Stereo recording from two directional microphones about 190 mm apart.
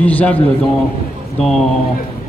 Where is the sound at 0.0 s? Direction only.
5° left (ahead or behind).